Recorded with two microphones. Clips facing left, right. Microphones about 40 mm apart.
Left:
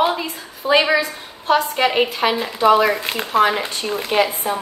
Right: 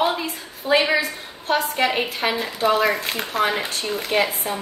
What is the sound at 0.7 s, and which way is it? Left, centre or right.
A woman's voice, left.